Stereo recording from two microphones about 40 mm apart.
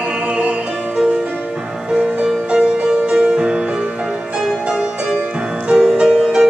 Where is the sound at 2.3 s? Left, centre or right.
Centre.